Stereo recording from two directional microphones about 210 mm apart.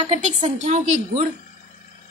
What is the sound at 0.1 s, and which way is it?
A woman's voice, 30° right (ahead or behind).